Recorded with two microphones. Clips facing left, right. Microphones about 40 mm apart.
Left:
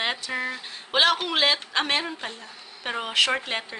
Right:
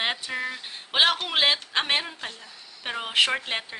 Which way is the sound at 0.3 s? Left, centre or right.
Centre.